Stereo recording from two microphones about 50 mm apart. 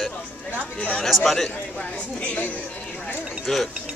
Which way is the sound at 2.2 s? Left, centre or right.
Left.